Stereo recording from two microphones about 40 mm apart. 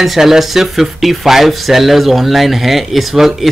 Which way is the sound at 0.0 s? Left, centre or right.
Centre.